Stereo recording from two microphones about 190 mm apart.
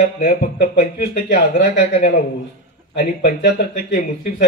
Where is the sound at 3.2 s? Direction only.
50° left (ahead or behind).